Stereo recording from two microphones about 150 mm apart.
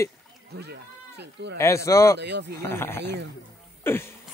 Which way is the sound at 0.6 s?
90° right.